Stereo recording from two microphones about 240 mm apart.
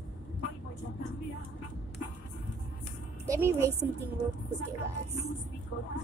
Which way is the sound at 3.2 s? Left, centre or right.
Centre.